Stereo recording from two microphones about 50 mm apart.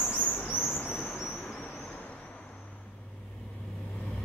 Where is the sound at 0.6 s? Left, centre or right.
Left.